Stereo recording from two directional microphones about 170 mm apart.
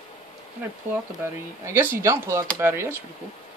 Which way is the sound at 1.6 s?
15° right (ahead or behind).